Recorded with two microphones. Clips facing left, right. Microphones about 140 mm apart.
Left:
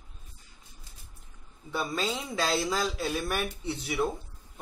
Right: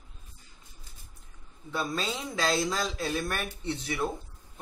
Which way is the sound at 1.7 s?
Centre (ahead or behind).